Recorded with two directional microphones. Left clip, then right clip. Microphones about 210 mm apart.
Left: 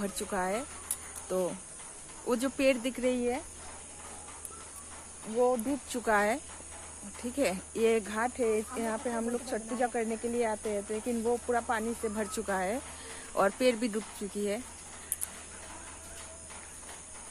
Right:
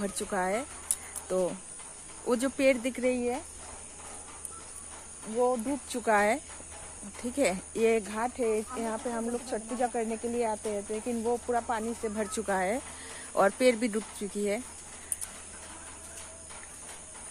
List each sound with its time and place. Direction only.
0.0 s speech: 15° right (ahead or behind)
2.2 s speech: 20° right (ahead or behind)
5.4 s speech: 10° right (ahead or behind)